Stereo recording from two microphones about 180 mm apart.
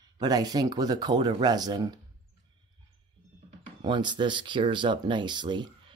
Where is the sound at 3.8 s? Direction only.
25° right (ahead or behind).